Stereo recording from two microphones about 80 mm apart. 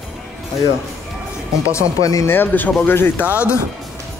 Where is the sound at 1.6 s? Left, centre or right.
Left.